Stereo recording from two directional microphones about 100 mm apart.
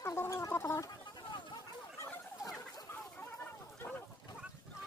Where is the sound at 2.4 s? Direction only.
25° left (ahead or behind).